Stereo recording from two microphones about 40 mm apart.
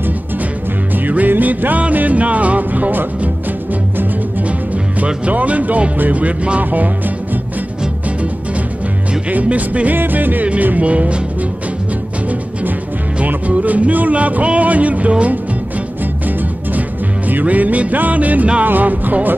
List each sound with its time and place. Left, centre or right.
0.9 s music: right
5.0 s music: right
6.6 s music: right
9.3 s music: right
10.4 s music: right
13.5 s music: right
17.3 s music: right